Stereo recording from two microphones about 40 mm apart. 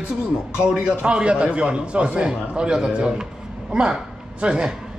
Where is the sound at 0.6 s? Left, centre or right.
Centre.